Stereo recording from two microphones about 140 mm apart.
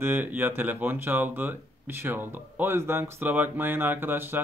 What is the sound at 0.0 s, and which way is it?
Speech, 15° right (ahead or behind).